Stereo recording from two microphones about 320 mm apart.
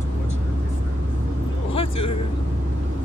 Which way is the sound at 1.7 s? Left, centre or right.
Centre.